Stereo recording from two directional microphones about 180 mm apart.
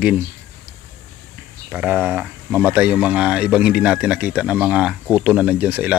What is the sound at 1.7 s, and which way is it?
Speech, 10° right (ahead or behind).